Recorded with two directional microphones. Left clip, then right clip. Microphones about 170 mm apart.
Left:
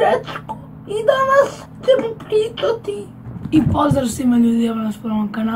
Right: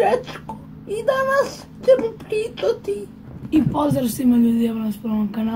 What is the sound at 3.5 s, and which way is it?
Speech, centre (ahead or behind).